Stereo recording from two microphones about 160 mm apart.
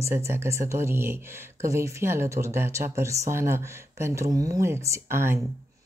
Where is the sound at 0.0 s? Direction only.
15° right (ahead or behind).